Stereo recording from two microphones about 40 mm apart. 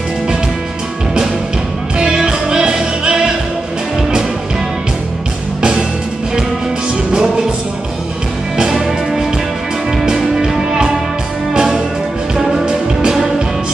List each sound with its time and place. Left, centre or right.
2.0 s music: centre
5.6 s music: right
7.1 s music: centre
8.5 s music: centre